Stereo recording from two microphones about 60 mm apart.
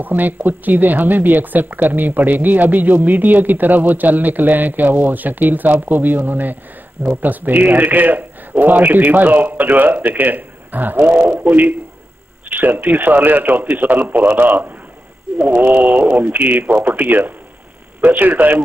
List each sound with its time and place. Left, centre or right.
0.0 s a man's voice: right